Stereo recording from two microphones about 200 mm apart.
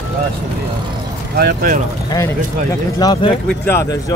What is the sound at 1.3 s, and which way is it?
Speech, 50° right (ahead or behind).